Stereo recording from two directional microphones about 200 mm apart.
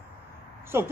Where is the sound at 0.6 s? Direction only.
10° right (ahead or behind).